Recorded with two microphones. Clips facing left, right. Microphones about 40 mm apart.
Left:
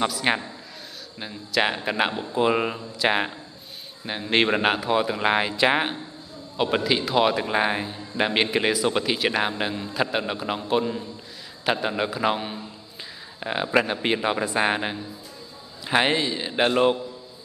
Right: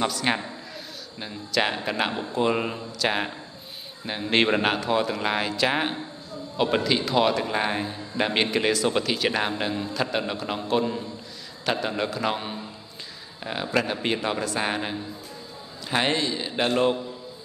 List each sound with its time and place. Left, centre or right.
0.0 s a man's voice: centre
1.5 s a man's voice: centre
4.0 s a man's voice: centre
6.5 s a man's voice: centre
13.4 s a man's voice: centre